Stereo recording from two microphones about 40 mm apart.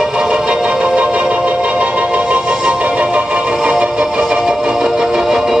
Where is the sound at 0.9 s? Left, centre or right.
Right.